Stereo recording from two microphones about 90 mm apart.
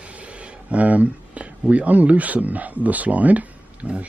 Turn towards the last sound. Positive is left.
turn(degrees=-15)  # may be behind; listen again after turning